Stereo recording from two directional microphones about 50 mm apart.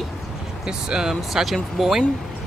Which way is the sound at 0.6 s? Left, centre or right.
Centre.